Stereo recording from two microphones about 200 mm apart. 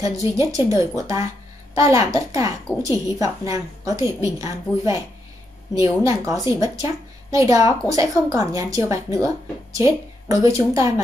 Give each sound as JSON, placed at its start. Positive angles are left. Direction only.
{"t": 0.0, "sound": "a woman's voice", "side_deg": -15}
{"t": 1.8, "sound": "a woman's voice", "side_deg": -15}